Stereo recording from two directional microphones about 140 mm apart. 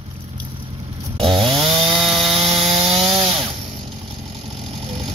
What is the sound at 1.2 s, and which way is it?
Chainsaw, 35° right (ahead or behind).